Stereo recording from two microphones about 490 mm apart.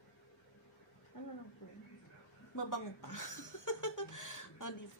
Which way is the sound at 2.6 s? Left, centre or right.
Left.